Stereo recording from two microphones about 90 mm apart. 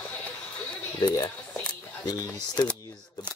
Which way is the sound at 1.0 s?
45° left (ahead or behind).